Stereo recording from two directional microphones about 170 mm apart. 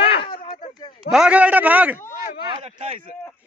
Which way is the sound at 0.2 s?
30° left (ahead or behind).